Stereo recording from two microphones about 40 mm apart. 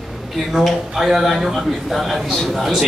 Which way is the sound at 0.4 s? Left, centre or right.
Centre.